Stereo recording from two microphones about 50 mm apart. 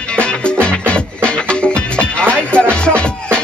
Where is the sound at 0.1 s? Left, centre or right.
Centre.